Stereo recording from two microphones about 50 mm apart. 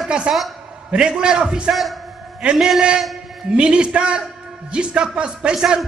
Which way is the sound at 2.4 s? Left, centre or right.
Centre.